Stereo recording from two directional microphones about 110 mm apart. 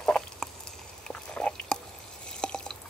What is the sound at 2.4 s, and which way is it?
Drip, 5° left (ahead or behind).